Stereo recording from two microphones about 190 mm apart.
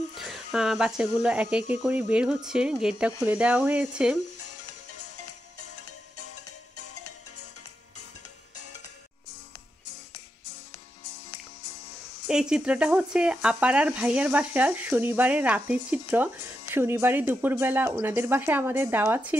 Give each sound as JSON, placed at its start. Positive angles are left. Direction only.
{"t": 0.2, "sound": "speech", "side_deg": 0}
{"t": 12.3, "sound": "speech", "side_deg": -5}